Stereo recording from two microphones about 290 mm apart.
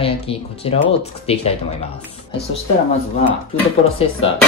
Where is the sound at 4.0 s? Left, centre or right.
Centre.